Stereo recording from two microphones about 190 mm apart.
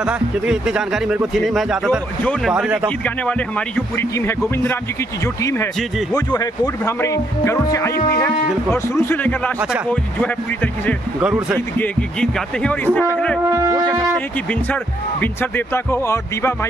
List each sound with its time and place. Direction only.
0.0 s a man's voice: 5° right (ahead or behind)
3.3 s a man's voice: 5° left (ahead or behind)